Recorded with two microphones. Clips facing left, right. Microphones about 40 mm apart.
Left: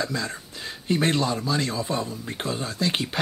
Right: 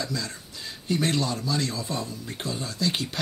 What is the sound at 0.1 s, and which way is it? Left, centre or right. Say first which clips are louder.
A man's voice: left 3 dB; left.